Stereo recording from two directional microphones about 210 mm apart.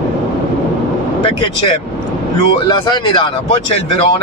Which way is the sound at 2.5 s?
20° left (ahead or behind).